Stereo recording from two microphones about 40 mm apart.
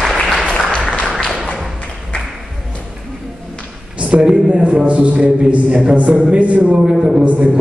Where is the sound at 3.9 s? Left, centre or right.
Right.